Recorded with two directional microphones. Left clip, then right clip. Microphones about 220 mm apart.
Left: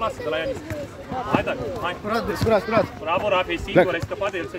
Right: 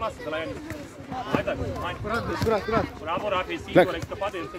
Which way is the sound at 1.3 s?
45° left (ahead or behind).